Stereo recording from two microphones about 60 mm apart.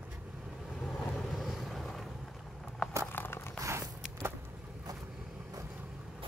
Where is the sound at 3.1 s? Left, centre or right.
Left.